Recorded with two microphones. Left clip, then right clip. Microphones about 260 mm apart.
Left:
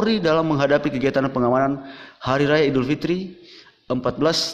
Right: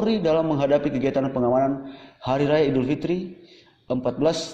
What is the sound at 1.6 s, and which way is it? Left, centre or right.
A man's voice, left.